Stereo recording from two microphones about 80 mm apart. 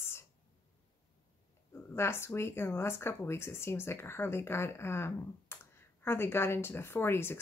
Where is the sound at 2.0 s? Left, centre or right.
Left.